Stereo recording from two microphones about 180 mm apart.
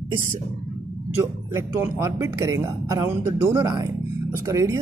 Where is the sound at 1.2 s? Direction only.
15° right (ahead or behind).